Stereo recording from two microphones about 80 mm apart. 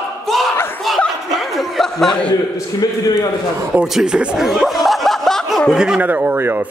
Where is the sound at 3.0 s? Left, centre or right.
Left.